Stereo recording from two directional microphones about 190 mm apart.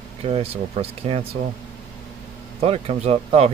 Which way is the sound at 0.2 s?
30° right (ahead or behind).